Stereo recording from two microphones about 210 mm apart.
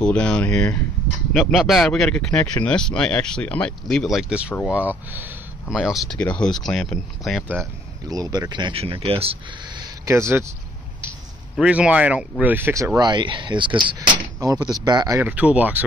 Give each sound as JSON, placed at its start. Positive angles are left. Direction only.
{"t": 0.0, "sound": "speech", "side_deg": 5}
{"t": 8.1, "sound": "speech", "side_deg": -20}
{"t": 11.5, "sound": "speech", "side_deg": -5}